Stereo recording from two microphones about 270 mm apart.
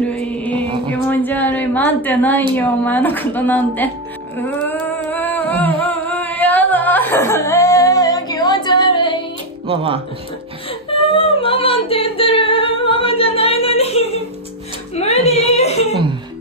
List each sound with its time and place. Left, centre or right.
0.1 s mantra: centre
0.8 s a woman's voice: centre
4.4 s music: centre
5.1 s singing: centre
9.7 s speech: right
10.9 s singing: centre
15.0 s whimper: left